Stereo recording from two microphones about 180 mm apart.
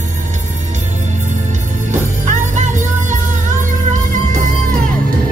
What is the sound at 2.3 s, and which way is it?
Music, 40° right (ahead or behind).